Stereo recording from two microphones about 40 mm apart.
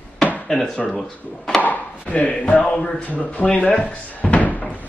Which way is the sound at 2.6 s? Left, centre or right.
Left.